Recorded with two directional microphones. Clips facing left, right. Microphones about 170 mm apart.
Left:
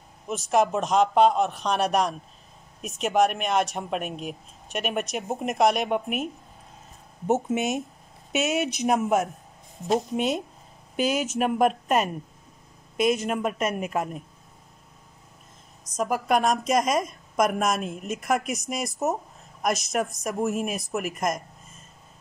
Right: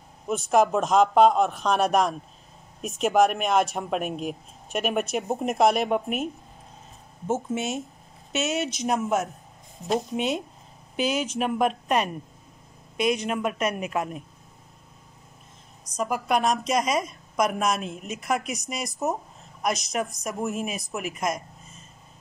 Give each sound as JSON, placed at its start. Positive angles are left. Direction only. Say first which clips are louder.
{"t": 0.5, "sound": "speech", "louder": "right 1 dB", "side_deg": 0}
{"t": 7.2, "sound": "speech", "louder": "left 3 dB", "side_deg": 20}
{"t": 8.5, "sound": "speech", "louder": "left 1 dB", "side_deg": 55}
{"t": 8.8, "sound": "speech", "louder": "left 3 dB", "side_deg": 5}
{"t": 11.0, "sound": "speech", "louder": "left 1 dB", "side_deg": 50}
{"t": 11.2, "sound": "speech", "louder": "left 2 dB", "side_deg": 5}
{"t": 16.0, "sound": "speech", "louder": "left 1 dB", "side_deg": 0}